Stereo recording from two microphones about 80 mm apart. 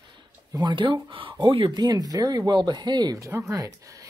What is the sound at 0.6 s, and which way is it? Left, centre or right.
Speech, right.